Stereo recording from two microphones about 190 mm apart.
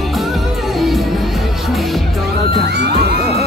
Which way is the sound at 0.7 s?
Centre (ahead or behind).